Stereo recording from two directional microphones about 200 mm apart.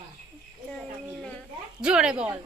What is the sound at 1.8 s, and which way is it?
Speech, 5° right (ahead or behind).